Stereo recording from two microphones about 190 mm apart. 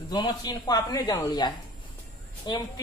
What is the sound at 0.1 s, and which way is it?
A woman's voice, 20° left (ahead or behind).